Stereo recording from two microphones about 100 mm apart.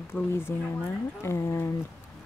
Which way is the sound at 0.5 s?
25° left (ahead or behind).